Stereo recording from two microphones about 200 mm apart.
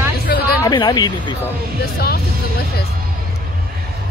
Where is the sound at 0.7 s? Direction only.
20° left (ahead or behind).